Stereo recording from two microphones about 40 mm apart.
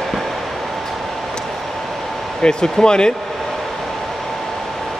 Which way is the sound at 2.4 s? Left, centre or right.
Centre.